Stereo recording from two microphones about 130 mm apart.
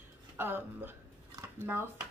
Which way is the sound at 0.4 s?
15° right (ahead or behind).